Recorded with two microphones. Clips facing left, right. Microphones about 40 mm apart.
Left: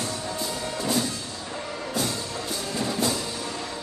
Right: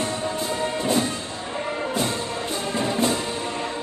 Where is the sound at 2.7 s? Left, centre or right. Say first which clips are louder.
Right 4 dB; right.